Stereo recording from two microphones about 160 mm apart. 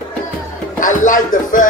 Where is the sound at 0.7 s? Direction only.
55° left (ahead or behind).